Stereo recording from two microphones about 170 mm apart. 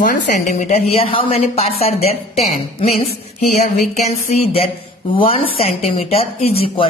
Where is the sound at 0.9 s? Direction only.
35° left (ahead or behind).